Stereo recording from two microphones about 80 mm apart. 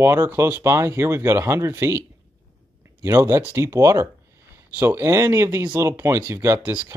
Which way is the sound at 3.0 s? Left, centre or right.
Right.